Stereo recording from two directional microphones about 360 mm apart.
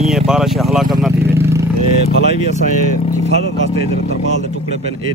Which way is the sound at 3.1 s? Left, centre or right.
Centre.